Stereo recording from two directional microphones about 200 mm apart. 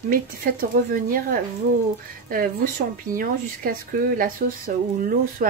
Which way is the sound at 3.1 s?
45° right (ahead or behind).